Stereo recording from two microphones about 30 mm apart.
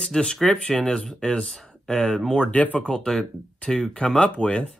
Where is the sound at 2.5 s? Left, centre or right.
Left.